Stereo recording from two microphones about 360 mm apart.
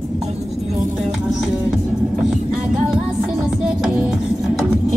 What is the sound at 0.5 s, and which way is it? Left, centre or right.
Music, centre.